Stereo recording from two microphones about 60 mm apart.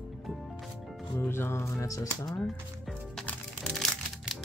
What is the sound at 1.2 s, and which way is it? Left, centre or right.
Speech, left.